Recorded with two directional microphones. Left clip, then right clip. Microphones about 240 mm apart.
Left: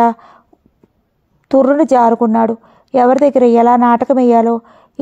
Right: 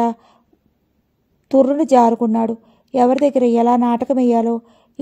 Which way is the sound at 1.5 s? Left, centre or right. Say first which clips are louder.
Left 4 dB; left.